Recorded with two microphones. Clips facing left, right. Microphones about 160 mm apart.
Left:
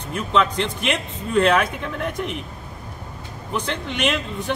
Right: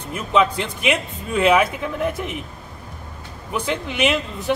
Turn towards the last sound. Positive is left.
turn(degrees=-5)  # may be behind; listen again after turning